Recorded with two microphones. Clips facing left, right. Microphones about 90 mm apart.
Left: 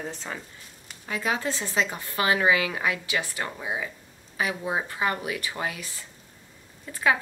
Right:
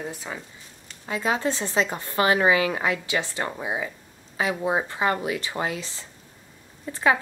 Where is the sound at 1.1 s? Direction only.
25° right (ahead or behind).